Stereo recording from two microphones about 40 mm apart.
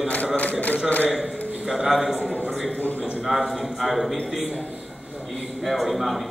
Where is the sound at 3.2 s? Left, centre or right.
Centre.